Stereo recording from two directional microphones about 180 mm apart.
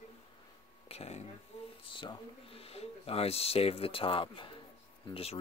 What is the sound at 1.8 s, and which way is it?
Speech, 30° left (ahead or behind).